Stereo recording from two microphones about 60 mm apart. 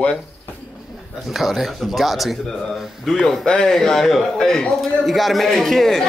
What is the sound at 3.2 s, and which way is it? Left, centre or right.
A man's voice, centre.